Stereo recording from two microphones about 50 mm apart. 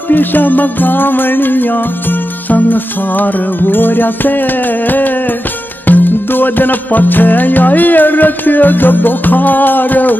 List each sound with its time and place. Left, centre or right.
0.1 s music: left